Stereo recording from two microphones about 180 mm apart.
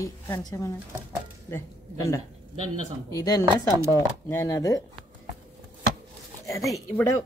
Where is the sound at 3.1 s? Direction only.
20° left (ahead or behind).